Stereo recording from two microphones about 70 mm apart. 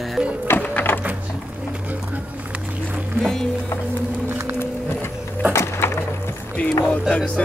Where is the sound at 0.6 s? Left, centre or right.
Centre.